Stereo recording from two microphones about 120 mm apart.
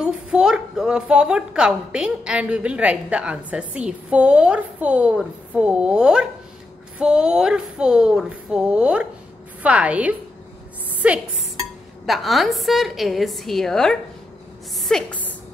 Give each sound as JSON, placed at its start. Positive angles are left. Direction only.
{"t": 0.0, "sound": "a woman's voice", "side_deg": -5}
{"t": 12.1, "sound": "a woman's voice", "side_deg": 0}